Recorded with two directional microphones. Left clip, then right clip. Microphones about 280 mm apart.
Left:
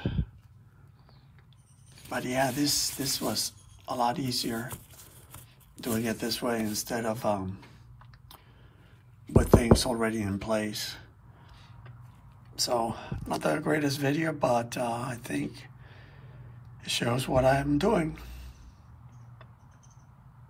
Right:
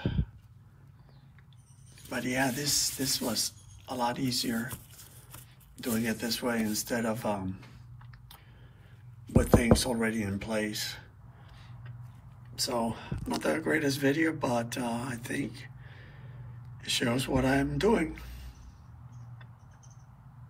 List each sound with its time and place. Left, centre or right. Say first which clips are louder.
0.0 s a sound: even; centre
2.0 s speech: left 2 dB; centre
6.0 s speech: left 2 dB; centre
9.3 s speech: left 2 dB; centre
12.5 s a man's voice: left 3 dB; centre